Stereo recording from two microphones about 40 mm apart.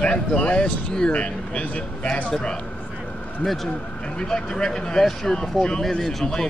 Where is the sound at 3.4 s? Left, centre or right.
Centre.